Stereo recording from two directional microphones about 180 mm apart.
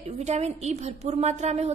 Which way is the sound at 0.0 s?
35° right (ahead or behind).